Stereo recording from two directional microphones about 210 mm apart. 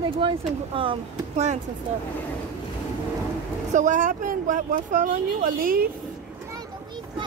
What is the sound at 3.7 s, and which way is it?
Speech, 35° right (ahead or behind).